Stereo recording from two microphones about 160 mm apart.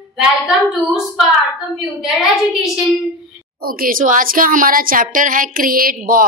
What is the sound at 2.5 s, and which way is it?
Speech, 5° right (ahead or behind).